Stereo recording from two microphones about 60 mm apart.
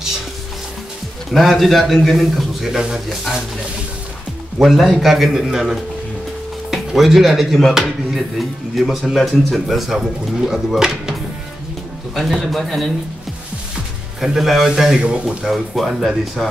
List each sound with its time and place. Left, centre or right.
1.3 s speech: centre
4.6 s speech: centre
12.2 s speech: centre
14.2 s a man's voice: centre
15.4 s speech: centre